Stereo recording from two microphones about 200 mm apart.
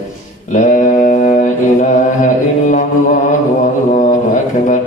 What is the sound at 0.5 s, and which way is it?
Mantra, 40° left (ahead or behind).